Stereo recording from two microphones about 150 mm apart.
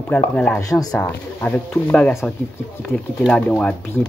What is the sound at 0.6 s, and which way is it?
Speech, 20° left (ahead or behind).